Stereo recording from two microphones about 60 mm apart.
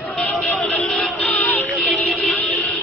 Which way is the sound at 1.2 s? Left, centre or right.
Left.